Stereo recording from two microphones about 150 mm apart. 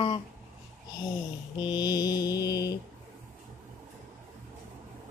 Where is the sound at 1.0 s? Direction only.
30° left (ahead or behind).